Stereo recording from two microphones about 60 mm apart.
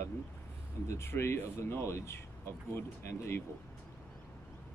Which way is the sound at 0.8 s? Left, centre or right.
Left.